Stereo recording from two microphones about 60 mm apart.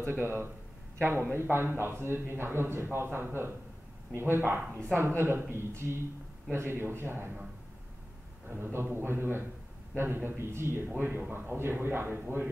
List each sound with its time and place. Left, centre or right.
0.0 s a man's voice: right
8.7 s a man's voice: right